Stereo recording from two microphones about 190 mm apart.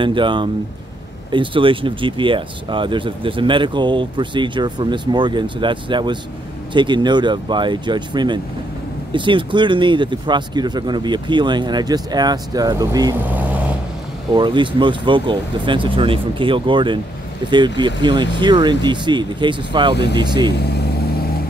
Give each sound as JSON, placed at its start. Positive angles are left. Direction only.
{"t": 0.0, "sound": "speech", "side_deg": -25}
{"t": 13.3, "sound": "vehicle", "side_deg": -10}
{"t": 14.3, "sound": "speech", "side_deg": -25}
{"t": 20.5, "sound": "speech", "side_deg": 60}